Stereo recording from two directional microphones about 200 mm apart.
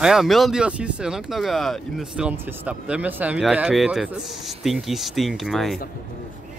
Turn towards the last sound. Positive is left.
turn(degrees=0)  # may be behind; listen again after turning